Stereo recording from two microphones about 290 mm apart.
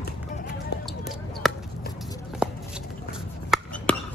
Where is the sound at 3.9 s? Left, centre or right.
Centre.